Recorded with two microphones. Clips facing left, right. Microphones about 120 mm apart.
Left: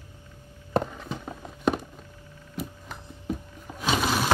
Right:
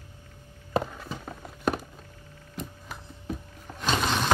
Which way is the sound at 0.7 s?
Centre (ahead or behind).